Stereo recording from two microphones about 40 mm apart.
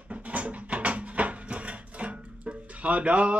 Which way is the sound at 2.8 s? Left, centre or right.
Right.